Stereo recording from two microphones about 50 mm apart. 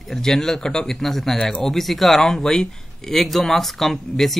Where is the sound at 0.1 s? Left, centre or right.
Centre.